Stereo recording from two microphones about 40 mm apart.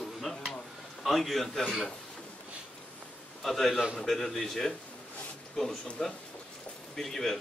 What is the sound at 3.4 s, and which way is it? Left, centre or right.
Speech, centre.